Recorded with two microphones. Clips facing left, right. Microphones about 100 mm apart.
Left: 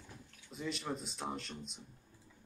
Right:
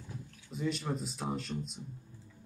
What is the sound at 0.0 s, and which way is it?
Speech, centre (ahead or behind).